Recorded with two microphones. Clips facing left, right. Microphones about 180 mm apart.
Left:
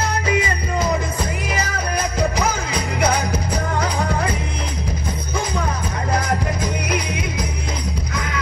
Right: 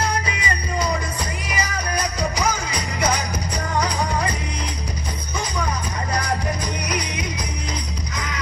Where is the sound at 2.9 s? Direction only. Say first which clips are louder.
Left 3 dB; 55° left (ahead or behind).